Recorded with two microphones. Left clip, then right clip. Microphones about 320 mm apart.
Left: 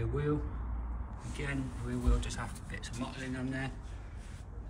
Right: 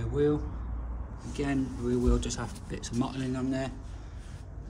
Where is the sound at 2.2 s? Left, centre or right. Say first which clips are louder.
Right 5 dB; centre.